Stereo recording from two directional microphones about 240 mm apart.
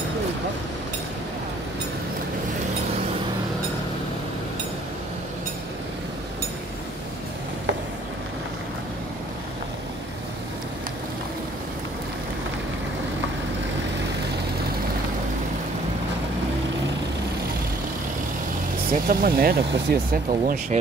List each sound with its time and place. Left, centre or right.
19.0 s speech: right